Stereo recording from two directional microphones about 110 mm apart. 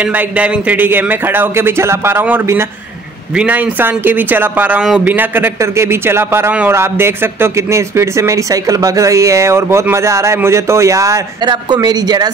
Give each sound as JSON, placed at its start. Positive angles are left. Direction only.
{"t": 0.0, "sound": "a man's voice", "side_deg": -15}